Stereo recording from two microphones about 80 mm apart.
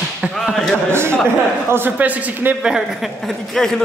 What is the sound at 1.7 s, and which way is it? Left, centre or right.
Speech, right.